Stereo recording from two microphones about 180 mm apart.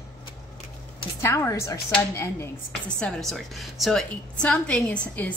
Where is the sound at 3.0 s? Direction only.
5° left (ahead or behind).